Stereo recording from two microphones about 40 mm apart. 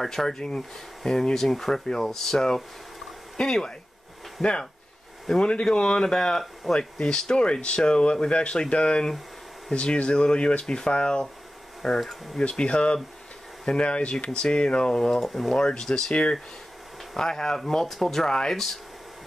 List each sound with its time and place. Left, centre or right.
0.0 s speech: centre
11.8 s speech: centre
12.4 s speech: left
15.0 s speech: centre
15.5 s speech: centre